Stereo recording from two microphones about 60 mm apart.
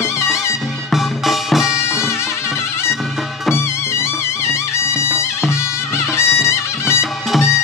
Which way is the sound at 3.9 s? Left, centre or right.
Left.